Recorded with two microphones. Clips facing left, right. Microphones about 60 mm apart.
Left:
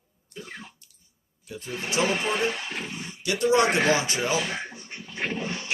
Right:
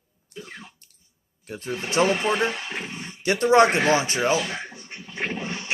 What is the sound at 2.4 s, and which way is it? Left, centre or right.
Speech, right.